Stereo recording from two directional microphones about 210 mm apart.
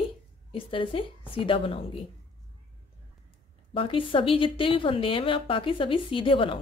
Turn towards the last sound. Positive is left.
turn(degrees=25)  # may be behind; listen again after turning